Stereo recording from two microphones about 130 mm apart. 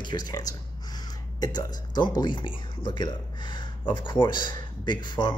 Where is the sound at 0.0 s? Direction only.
35° left (ahead or behind).